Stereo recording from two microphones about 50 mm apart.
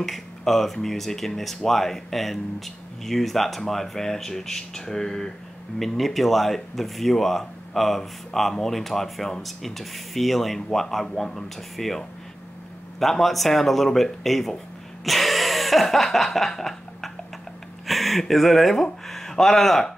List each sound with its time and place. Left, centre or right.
0.0 s speech: centre
15.0 s a sound: centre
17.8 s speech: centre